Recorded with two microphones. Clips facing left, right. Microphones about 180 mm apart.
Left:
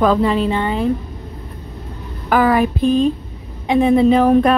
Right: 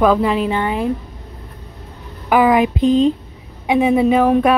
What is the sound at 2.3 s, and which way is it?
Speech, 15° right (ahead or behind).